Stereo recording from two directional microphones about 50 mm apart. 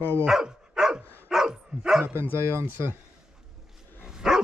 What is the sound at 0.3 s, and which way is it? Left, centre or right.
Dog, centre.